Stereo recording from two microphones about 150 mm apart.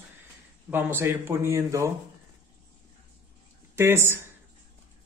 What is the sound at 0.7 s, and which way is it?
Speech, 15° right (ahead or behind).